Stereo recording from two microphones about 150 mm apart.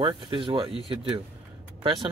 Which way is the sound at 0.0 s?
35° right (ahead or behind).